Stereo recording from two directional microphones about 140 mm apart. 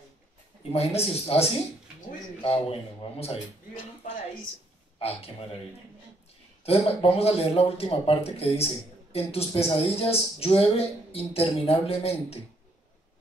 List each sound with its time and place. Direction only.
0.7 s speech: 45° left (ahead or behind)
4.9 s a man's voice: 45° left (ahead or behind)
6.6 s speech: 45° left (ahead or behind)